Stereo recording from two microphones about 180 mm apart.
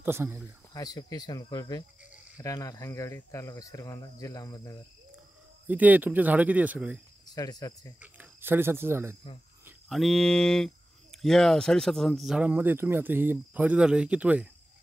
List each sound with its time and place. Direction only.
0.0 s speech: 15° right (ahead or behind)
0.7 s speech: 20° left (ahead or behind)
5.7 s speech: 10° right (ahead or behind)
7.2 s speech: 20° left (ahead or behind)
8.0 s speech: 10° right (ahead or behind)
9.8 s speech: centre (ahead or behind)